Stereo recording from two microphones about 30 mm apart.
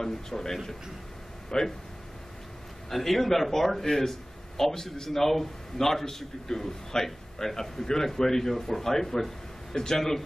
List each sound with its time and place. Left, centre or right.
0.0 s a man's voice: centre
1.5 s speech: left
2.9 s a man's voice: centre